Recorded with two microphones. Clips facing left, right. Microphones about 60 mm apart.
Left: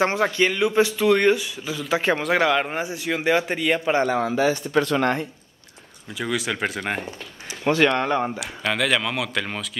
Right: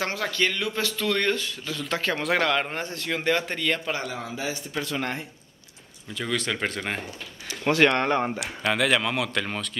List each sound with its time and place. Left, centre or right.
0.0 s speech: left
3.8 s a man's voice: left
4.1 s speech: left
6.1 s speech: centre
7.8 s a man's voice: centre